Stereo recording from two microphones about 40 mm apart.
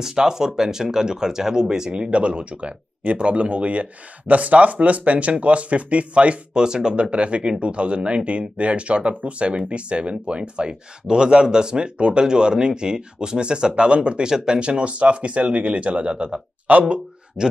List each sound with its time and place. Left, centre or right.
0.0 s speech: centre
1.9 s speech: right
6.5 s speech: centre
14.2 s speech: centre
14.6 s speech: right
17.4 s speech: centre